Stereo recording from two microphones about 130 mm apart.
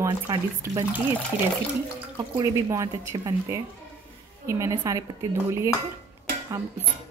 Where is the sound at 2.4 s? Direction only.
25° right (ahead or behind).